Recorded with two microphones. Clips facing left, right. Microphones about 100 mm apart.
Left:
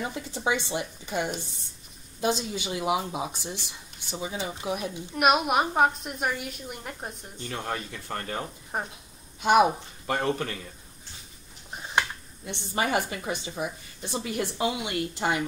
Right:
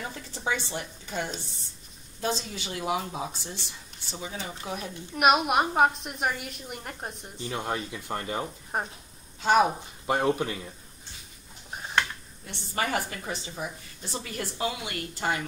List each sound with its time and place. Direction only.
0.0 s speech: 15° left (ahead or behind)
5.1 s a woman's voice: centre (ahead or behind)
9.4 s speech: 15° left (ahead or behind)
10.0 s speech: 15° right (ahead or behind)
12.4 s speech: 20° left (ahead or behind)